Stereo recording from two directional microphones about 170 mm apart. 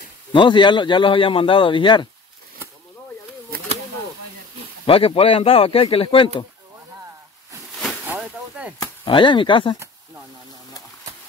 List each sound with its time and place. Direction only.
0.3 s speech: 30° left (ahead or behind)
4.8 s speech: 35° left (ahead or behind)
7.7 s a sound: centre (ahead or behind)
9.0 s speech: 30° left (ahead or behind)